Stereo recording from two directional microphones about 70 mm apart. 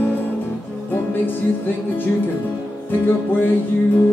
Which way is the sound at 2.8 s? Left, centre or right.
Left.